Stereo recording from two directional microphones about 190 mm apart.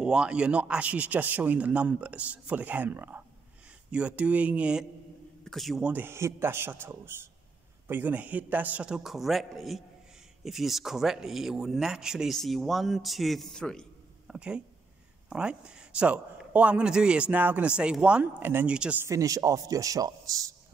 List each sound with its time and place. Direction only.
0.0 s a man's voice: 5° right (ahead or behind)
19.0 s a man's voice: 15° right (ahead or behind)